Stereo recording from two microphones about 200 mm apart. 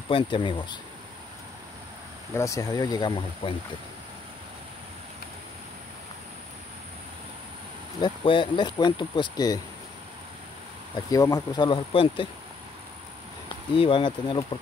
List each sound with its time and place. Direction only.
0.1 s speech: 25° left (ahead or behind)
2.3 s speech: 15° left (ahead or behind)
8.0 s speech: 25° left (ahead or behind)
11.1 s speech: 15° left (ahead or behind)
13.7 s speech: 25° left (ahead or behind)